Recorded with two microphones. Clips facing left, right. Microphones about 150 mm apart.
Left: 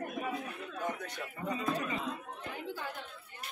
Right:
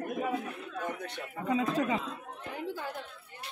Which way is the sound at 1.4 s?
90° right.